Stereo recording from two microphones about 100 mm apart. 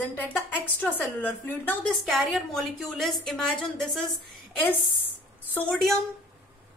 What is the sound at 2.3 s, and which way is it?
A woman's voice, centre (ahead or behind).